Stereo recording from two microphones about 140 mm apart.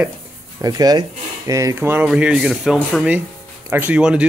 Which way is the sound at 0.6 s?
25° right (ahead or behind).